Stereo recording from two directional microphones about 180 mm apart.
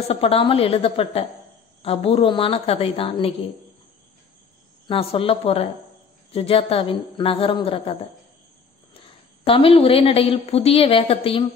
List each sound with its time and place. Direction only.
0.1 s a woman's voice: 30° left (ahead or behind)
4.8 s a woman's voice: 30° left (ahead or behind)